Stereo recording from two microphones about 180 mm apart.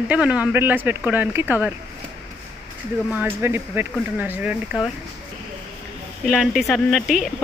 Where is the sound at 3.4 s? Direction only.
15° right (ahead or behind).